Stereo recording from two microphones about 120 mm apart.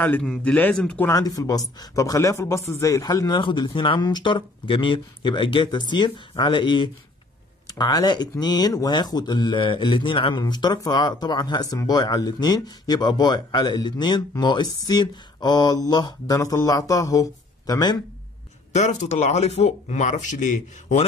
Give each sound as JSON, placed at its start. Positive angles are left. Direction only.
{"t": 0.0, "sound": "speech", "side_deg": 15}
{"t": 1.0, "sound": "speech", "side_deg": 30}
{"t": 18.7, "sound": "speech", "side_deg": 70}